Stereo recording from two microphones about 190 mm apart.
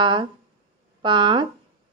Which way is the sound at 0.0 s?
25° right (ahead or behind).